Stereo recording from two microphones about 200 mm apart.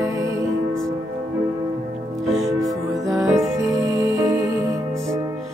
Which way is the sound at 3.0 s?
15° right (ahead or behind).